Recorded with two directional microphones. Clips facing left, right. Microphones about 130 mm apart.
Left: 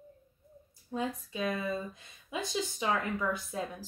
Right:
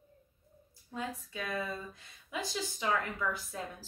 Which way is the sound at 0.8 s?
20° left (ahead or behind).